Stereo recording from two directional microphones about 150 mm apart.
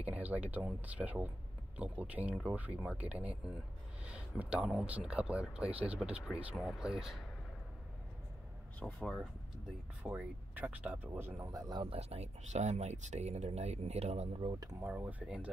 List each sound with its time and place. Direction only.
0.0 s speech: 10° right (ahead or behind)
9.0 s speech: centre (ahead or behind); by 12.0 s 30° right (ahead or behind)
12.0 s speech: 45° right (ahead or behind)
14.4 s speech: 30° right (ahead or behind)
14.9 s speech: 10° right (ahead or behind)